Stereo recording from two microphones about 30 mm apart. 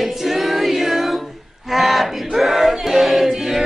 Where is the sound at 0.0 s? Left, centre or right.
Centre.